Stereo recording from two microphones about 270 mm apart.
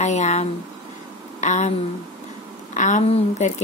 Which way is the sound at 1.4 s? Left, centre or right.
Left.